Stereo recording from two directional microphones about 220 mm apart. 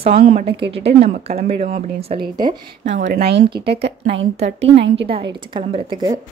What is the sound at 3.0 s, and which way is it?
Speech, 50° right (ahead or behind).